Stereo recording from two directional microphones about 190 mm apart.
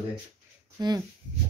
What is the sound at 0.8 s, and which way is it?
Speech, 20° right (ahead or behind).